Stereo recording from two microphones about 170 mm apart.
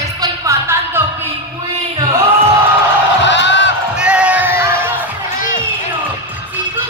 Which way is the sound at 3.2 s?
90° left.